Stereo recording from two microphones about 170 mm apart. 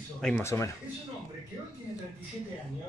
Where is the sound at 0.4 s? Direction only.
15° left (ahead or behind).